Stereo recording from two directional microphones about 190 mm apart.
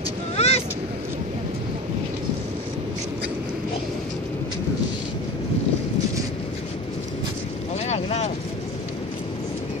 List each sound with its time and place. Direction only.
0.4 s vehicle: 30° left (ahead or behind)
7.8 s vehicle: 35° left (ahead or behind)